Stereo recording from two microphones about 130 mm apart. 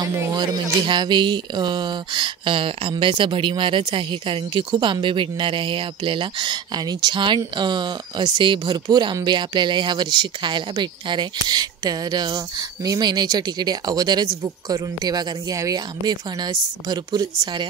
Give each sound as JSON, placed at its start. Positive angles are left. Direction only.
{"t": 0.0, "sound": "speech", "side_deg": -30}